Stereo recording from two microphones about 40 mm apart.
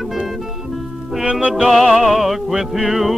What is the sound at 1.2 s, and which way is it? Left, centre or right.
Music, right.